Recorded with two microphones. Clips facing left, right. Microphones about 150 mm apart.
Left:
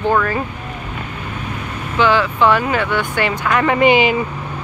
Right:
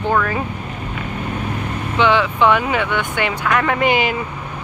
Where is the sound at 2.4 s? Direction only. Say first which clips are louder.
Left 1 dB; 15° right (ahead or behind).